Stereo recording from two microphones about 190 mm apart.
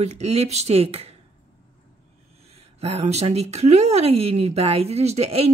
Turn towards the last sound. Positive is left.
turn(degrees=-30)  # may be behind; listen again after turning